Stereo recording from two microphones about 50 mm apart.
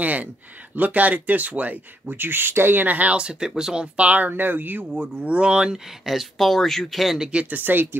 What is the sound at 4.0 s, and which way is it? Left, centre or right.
Speech, right.